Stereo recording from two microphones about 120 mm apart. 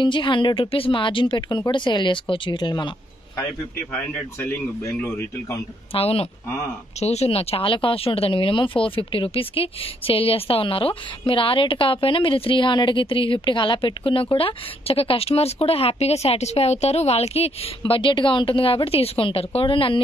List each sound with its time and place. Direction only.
0.0 s speech: 40° left (ahead or behind)
3.9 s speech: 10° left (ahead or behind)
5.9 s speech: 55° left (ahead or behind)